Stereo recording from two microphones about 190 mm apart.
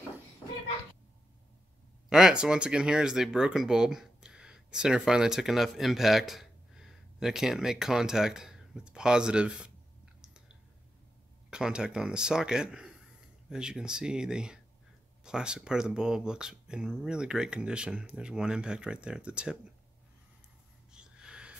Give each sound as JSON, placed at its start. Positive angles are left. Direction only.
{"t": 2.0, "sound": "speech", "side_deg": -5}
{"t": 11.5, "sound": "speech", "side_deg": -5}
{"t": 20.9, "sound": "snort", "side_deg": -5}